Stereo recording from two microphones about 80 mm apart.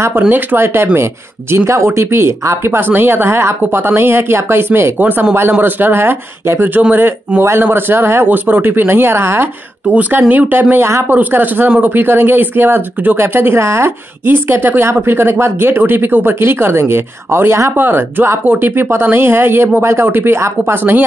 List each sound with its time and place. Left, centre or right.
0.3 s speech: right